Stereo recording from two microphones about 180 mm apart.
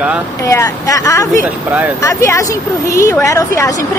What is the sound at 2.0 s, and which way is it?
A woman's voice, 15° left (ahead or behind).